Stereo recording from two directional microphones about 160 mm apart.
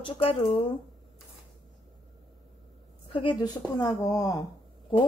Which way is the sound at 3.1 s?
30° left (ahead or behind).